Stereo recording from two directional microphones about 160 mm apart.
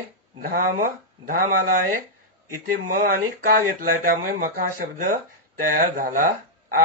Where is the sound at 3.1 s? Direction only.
60° right (ahead or behind).